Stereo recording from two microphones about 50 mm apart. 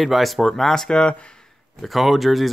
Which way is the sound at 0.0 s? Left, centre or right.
Centre.